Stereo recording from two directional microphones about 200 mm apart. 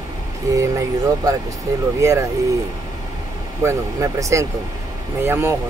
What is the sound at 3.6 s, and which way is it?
Speech, 15° right (ahead or behind).